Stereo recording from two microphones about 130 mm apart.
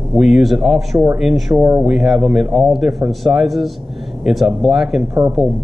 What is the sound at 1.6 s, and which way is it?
Speech, 20° right (ahead or behind).